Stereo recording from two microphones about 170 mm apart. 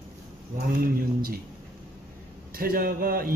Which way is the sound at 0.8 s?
60° right (ahead or behind).